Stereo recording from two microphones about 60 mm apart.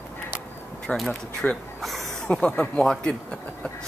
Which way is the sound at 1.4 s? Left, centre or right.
Left.